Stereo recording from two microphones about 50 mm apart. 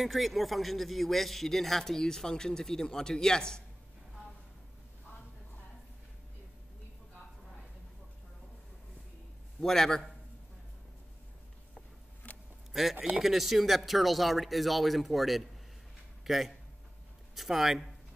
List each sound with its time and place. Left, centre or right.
0.0 s a man's voice: centre
9.6 s a man's voice: centre
12.2 s a sound: left
12.7 s a man's voice: centre